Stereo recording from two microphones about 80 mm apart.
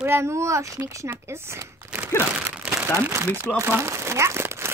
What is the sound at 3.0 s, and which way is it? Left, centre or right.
A child's voice, right.